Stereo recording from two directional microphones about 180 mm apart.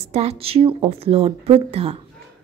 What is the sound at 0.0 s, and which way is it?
Speech, 35° right (ahead or behind).